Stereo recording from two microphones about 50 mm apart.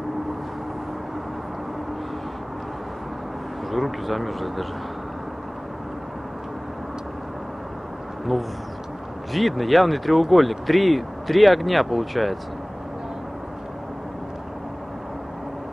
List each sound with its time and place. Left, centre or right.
3.7 s speech: centre
9.3 s speech: centre